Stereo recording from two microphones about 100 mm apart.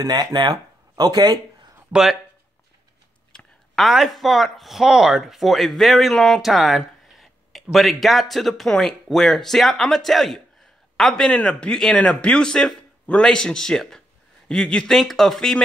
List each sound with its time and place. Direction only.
0.0 s speech: 45° right (ahead or behind)
1.9 s speech: 5° right (ahead or behind)
3.3 s a man's voice: centre (ahead or behind)